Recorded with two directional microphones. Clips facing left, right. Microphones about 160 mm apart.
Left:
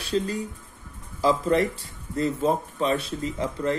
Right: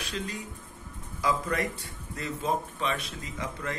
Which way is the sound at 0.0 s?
35° left (ahead or behind).